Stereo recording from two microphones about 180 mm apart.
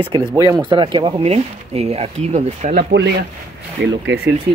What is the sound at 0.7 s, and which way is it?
Speech, 25° right (ahead or behind).